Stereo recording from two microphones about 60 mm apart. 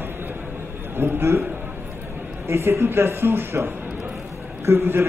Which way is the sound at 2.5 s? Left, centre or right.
Right.